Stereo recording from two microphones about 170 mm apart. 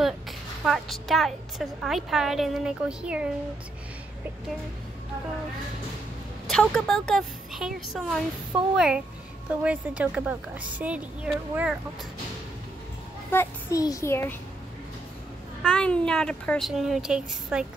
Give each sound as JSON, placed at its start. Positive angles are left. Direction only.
{"t": 0.7, "sound": "a woman's voice", "side_deg": 0}
{"t": 6.4, "sound": "a woman's voice", "side_deg": 0}
{"t": 13.3, "sound": "a child's voice", "side_deg": 15}
{"t": 15.6, "sound": "a woman's voice", "side_deg": 5}